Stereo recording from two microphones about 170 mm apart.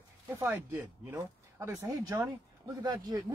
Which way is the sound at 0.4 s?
15° right (ahead or behind).